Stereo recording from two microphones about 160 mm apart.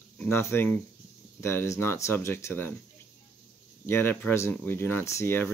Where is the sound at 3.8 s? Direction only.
15° left (ahead or behind).